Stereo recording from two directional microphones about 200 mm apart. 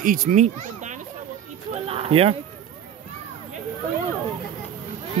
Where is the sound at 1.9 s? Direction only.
30° right (ahead or behind).